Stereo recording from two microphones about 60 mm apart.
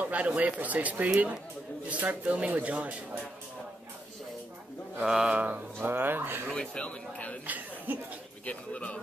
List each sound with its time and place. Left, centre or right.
0.0 s a sound: right
0.6 s speech: right
5.0 s a sound: centre
5.3 s speech: right
5.9 s speech: right
6.5 s speech: centre
7.4 s speech: right
8.5 s speech: left